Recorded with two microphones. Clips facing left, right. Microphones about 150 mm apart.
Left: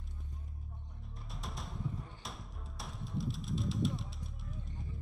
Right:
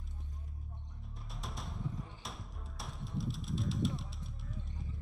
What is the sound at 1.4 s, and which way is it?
Music, centre (ahead or behind).